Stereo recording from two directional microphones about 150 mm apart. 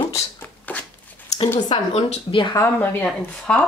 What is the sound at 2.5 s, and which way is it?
Speech, 15° left (ahead or behind).